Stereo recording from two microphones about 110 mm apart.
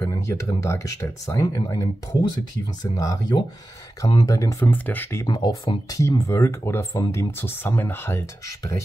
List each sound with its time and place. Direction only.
0.0 s speech: 25° left (ahead or behind)
4.6 s speech: 15° left (ahead or behind)
5.2 s speech: 40° left (ahead or behind); by 8.7 s 25° left (ahead or behind)